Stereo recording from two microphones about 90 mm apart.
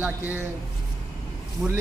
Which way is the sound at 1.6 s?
10° right (ahead or behind).